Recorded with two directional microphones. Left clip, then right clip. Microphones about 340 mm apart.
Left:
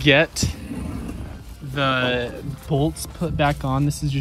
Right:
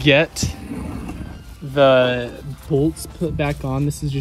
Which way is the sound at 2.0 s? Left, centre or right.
Centre.